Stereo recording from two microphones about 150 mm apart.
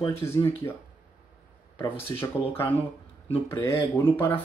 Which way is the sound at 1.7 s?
15° left (ahead or behind).